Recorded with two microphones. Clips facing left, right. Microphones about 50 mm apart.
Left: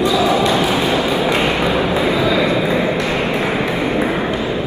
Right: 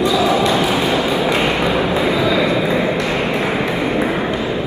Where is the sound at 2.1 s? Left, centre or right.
Left.